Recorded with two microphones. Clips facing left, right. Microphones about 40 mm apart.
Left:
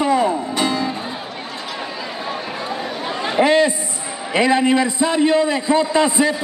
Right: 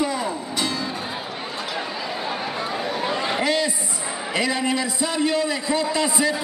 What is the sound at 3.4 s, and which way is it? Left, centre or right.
A man's voice, left.